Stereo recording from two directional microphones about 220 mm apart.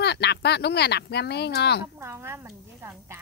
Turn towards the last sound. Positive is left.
turn(degrees=-10)  # may be behind; listen again after turning